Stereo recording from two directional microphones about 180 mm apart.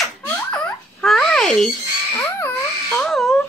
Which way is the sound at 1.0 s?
Centre (ahead or behind).